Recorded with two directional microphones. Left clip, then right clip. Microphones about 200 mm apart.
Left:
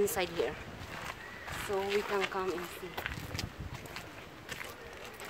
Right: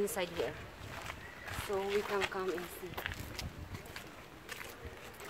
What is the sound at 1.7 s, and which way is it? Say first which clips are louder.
Speech: left 2 dB; 15° left (ahead or behind).